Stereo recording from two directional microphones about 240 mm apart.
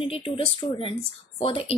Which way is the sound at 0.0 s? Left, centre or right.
Left.